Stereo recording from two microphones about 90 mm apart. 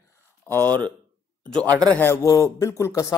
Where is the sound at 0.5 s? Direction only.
20° left (ahead or behind).